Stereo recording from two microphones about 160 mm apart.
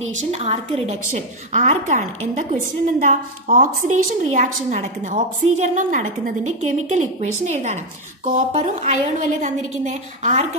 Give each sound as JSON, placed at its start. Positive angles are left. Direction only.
{"t": 0.3, "sound": "a woman's voice", "side_deg": -40}